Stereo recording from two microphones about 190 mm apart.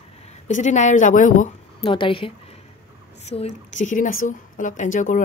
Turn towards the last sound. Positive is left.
turn(degrees=40)  # may be behind; listen again after turning